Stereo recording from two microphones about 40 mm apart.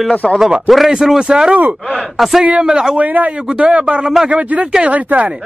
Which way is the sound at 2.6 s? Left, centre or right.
Centre.